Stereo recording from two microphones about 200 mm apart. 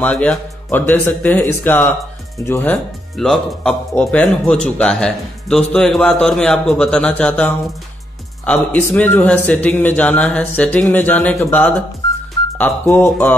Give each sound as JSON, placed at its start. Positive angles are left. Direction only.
{"t": 0.0, "sound": "speech", "side_deg": 5}